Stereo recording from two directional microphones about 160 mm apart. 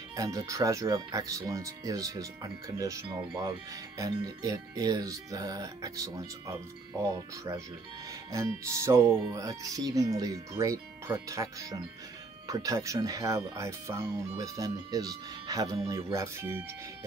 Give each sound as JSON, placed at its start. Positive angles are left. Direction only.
{"t": 0.1, "sound": "speech", "side_deg": -20}
{"t": 8.3, "sound": "speech", "side_deg": -20}